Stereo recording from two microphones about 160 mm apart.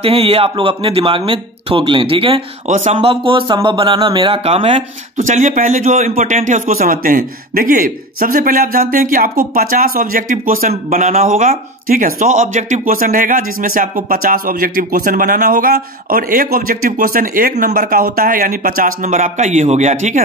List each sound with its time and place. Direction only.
0.0 s speech: 35° right (ahead or behind)